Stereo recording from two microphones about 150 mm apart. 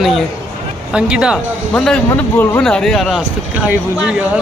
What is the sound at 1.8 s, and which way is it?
Speech, 10° left (ahead or behind).